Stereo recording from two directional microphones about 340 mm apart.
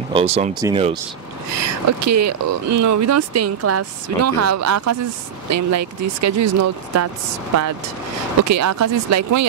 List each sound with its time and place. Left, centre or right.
0.1 s speech: centre
1.5 s speech: right
8.4 s speech: right